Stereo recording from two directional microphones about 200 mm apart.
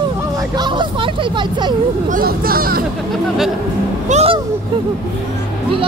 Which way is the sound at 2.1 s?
45° right (ahead or behind).